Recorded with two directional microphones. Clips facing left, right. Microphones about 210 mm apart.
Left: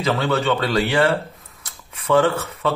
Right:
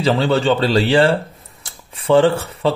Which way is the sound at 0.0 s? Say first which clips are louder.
Right 4 dB; 30° right (ahead or behind).